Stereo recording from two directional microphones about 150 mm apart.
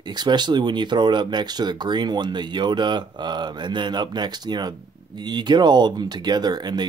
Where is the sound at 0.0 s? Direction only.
30° right (ahead or behind).